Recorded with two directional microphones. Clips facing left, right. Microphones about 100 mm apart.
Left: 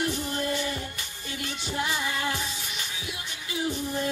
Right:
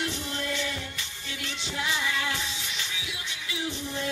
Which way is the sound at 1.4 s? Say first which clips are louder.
Left 3 dB; 45° left (ahead or behind).